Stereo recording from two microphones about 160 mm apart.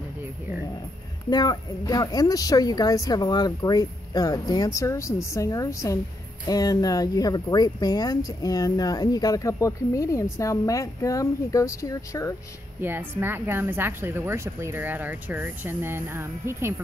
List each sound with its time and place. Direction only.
1.3 s speech: 25° left (ahead or behind)
12.8 s speech: 15° right (ahead or behind)